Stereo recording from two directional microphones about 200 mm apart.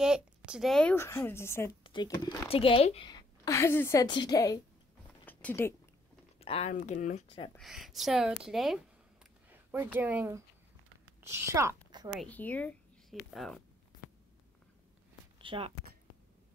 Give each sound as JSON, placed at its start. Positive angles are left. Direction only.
{"t": 0.0, "sound": "a woman's voice", "side_deg": -5}
{"t": 1.8, "sound": "a woman's voice", "side_deg": 25}
{"t": 5.2, "sound": "a sound", "side_deg": 10}
{"t": 6.4, "sound": "speech", "side_deg": 30}
{"t": 6.8, "sound": "speech", "side_deg": 40}
{"t": 7.2, "sound": "a woman's voice", "side_deg": 25}
{"t": 7.5, "sound": "speech", "side_deg": 0}
{"t": 9.5, "sound": "a sound", "side_deg": -10}
{"t": 9.9, "sound": "a woman's voice", "side_deg": -10}
{"t": 12.2, "sound": "a woman's voice", "side_deg": 10}
{"t": 15.4, "sound": "speech", "side_deg": -25}